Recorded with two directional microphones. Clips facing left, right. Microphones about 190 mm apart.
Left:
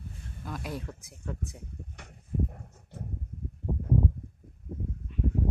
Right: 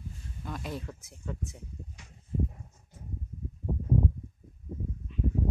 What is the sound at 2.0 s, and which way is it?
Horse, 65° left (ahead or behind).